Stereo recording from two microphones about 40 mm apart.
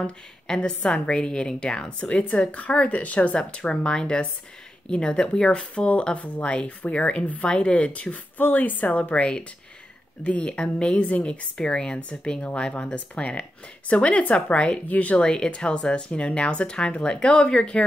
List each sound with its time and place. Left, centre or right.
0.5 s speech: left
3.5 s speech: left
8.4 s speech: left
11.5 s speech: centre
12.9 s speech: left
15.2 s speech: centre